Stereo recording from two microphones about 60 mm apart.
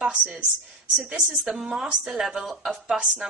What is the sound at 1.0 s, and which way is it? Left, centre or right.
A woman's voice, centre.